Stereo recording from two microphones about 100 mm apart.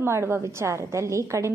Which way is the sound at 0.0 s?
25° right (ahead or behind).